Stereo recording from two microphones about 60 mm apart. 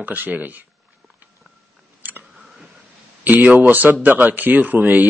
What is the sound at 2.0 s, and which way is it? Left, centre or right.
Chewing, right.